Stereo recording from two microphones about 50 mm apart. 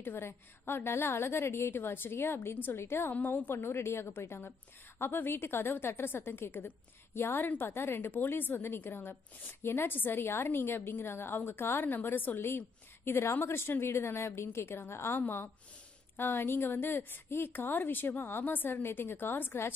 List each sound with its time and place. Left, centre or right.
0.0 s a woman's voice: left
3.1 s a woman's voice: left
15.1 s a woman's voice: left